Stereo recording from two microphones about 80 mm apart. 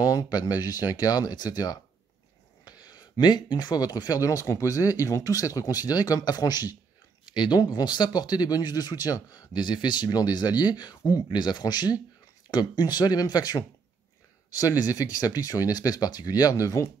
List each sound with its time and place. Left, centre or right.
0.0 s speech: left
7.2 s speech: left